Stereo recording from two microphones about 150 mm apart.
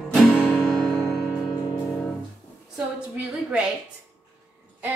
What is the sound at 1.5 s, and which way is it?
Music, 30° left (ahead or behind).